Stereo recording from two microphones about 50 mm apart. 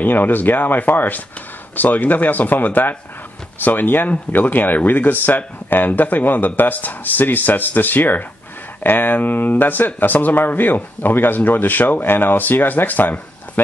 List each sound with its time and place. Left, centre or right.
0.0 s speech: left